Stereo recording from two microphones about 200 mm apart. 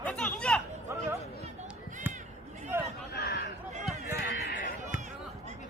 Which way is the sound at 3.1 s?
55° left (ahead or behind).